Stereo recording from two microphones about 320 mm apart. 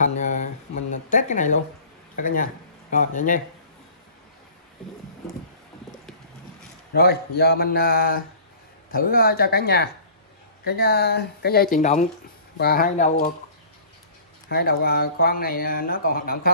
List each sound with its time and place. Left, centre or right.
0.0 s a sound: left
1.1 s speech: left
6.9 s speech: left
14.5 s speech: left